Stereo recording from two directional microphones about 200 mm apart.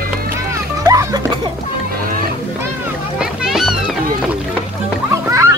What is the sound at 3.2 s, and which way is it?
Music, centre (ahead or behind).